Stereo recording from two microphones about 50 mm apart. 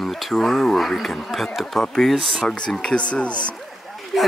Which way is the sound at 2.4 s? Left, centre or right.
Centre.